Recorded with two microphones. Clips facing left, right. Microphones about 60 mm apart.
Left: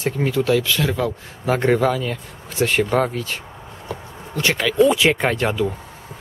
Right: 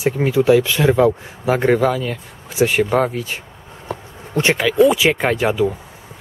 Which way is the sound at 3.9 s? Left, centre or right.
Right.